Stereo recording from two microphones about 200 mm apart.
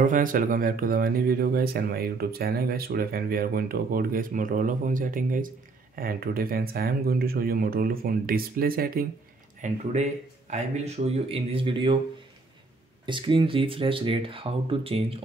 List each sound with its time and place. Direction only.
0.0 s speech: 45° right (ahead or behind)
9.6 s speech: 35° right (ahead or behind)
13.0 s speech: 25° right (ahead or behind)